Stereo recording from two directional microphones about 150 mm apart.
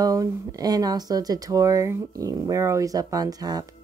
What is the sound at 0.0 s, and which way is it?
A woman's voice, 25° right (ahead or behind).